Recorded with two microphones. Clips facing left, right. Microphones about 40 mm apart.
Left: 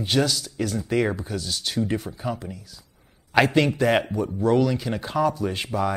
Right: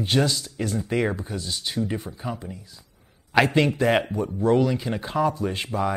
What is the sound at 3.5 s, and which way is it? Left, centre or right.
Speech, centre.